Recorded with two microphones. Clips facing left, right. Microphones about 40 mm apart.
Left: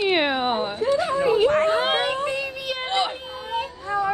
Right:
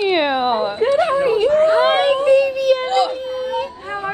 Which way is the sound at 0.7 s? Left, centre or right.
Right.